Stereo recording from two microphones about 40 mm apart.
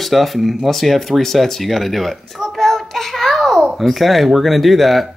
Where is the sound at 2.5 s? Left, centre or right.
Centre.